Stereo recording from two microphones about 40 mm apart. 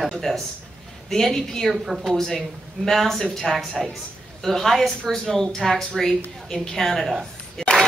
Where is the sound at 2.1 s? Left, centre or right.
Centre.